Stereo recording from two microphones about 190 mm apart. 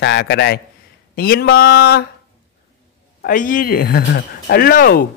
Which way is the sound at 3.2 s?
45° left (ahead or behind).